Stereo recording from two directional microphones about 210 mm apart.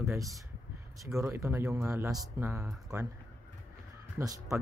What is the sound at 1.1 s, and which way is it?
Speech, 15° right (ahead or behind).